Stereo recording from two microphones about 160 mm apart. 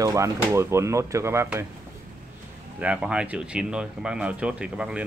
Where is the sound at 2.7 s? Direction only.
10° right (ahead or behind).